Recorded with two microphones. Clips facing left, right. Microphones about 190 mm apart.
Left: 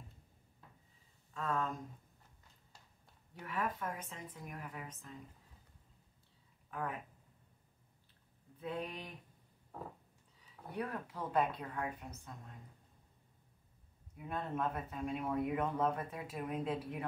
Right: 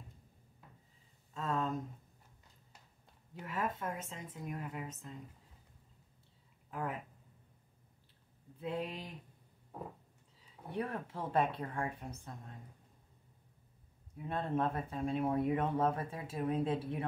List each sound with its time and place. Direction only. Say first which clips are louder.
1.3 s speech: right 1 dB; 25° right (ahead or behind)
3.3 s speech: right 1 dB; 25° right (ahead or behind)
8.5 s speech: right 2 dB; 25° right (ahead or behind)
10.5 s speech: right 2 dB; 25° right (ahead or behind)
14.2 s speech: right 4 dB; 30° right (ahead or behind)